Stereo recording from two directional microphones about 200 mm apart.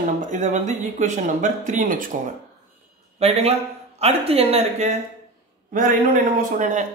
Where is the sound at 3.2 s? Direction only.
30° right (ahead or behind).